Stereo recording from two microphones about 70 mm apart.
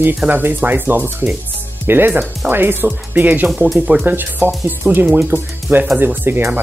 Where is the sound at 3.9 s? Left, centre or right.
Right.